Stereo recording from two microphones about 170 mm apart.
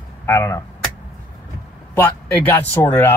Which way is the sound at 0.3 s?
15° left (ahead or behind).